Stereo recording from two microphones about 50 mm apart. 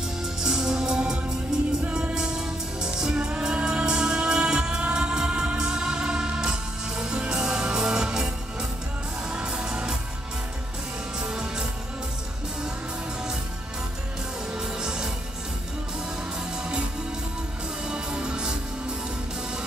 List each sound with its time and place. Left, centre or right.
0.4 s music: centre
2.1 s music: centre
11.1 s music: centre
14.5 s music: centre
16.5 s music: centre
17.8 s music: centre